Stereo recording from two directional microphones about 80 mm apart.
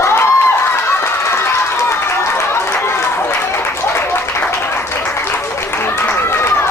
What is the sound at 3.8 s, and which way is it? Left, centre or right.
Applause, left.